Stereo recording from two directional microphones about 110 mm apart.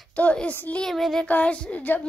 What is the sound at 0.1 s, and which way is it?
A woman's voice, 10° left (ahead or behind).